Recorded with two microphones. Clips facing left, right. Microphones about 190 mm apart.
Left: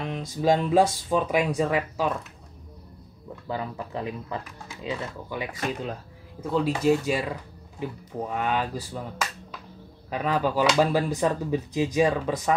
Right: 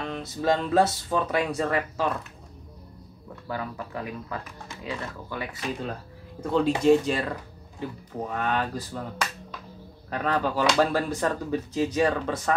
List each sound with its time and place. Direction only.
0.0 s speech: 10° left (ahead or behind)
3.4 s speech: 20° left (ahead or behind)
6.4 s speech: 5° left (ahead or behind)